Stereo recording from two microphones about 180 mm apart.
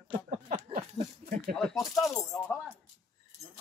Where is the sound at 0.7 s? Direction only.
45° right (ahead or behind).